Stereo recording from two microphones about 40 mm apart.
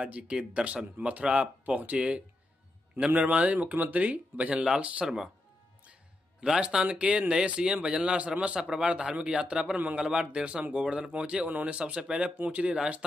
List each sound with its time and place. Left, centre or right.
0.0 s a man's voice: right
5.0 s speech: centre
6.4 s a man's voice: right